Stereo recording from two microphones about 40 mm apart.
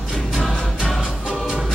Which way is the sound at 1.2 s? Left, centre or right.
Centre.